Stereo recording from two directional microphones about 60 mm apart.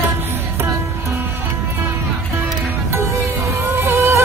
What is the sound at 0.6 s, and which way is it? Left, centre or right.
Music, right.